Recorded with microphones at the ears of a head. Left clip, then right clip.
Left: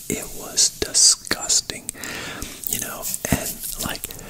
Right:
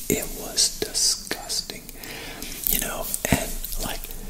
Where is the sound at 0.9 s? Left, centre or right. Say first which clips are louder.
Left 7 dB; left.